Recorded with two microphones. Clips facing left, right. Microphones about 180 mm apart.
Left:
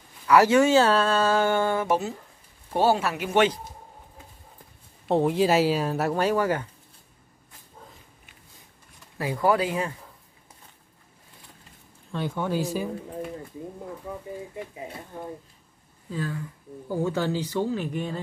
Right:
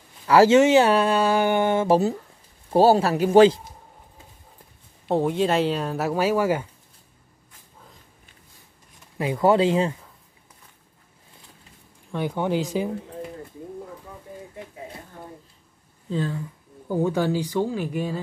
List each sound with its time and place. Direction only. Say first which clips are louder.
0.3 s speech: right 3 dB; 25° right (ahead or behind)
5.0 s speech: even; centre (ahead or behind)
9.2 s speech: right 4 dB; 25° right (ahead or behind)
12.1 s speech: right 3 dB; 15° right (ahead or behind)
16.1 s speech: right 4 dB; 25° right (ahead or behind); by 18.2 s 5° right (ahead or behind)